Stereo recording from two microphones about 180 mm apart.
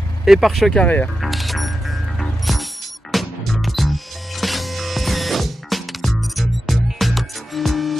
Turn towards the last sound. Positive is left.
turn(degrees=0)  # may be behind; listen again after turning